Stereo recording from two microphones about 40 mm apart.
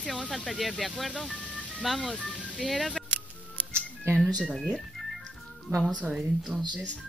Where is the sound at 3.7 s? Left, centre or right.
Right.